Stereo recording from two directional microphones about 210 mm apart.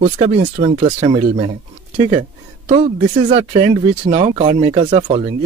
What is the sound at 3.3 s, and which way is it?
Speech, 30° right (ahead or behind).